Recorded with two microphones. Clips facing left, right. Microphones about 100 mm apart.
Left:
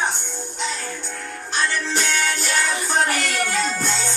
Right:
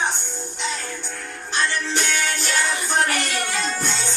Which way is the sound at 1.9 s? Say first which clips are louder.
Left 1 dB; centre (ahead or behind).